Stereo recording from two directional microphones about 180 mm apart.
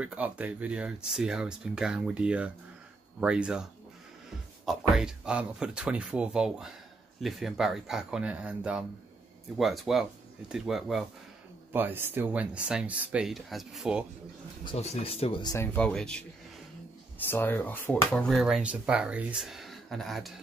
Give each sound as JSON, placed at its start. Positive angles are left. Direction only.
{"t": 0.0, "sound": "speech", "side_deg": -10}
{"t": 4.6, "sound": "speech", "side_deg": -5}
{"t": 11.7, "sound": "speech", "side_deg": -10}
{"t": 14.6, "sound": "speech", "side_deg": 30}
{"t": 15.5, "sound": "speech", "side_deg": 10}
{"t": 17.3, "sound": "speech", "side_deg": 10}